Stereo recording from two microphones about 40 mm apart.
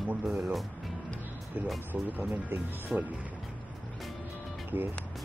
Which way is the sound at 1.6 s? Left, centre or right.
Right.